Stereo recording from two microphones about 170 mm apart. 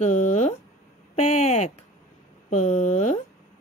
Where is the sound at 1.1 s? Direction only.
40° left (ahead or behind).